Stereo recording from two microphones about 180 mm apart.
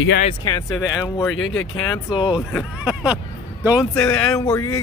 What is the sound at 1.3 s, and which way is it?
Speech, 90° left.